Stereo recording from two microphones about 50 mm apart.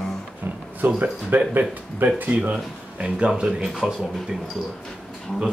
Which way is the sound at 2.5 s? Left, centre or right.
Right.